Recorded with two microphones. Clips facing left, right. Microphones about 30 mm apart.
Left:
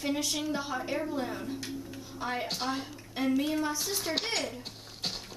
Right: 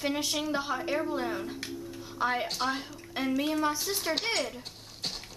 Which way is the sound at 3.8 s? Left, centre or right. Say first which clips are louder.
Right 1 dB; centre.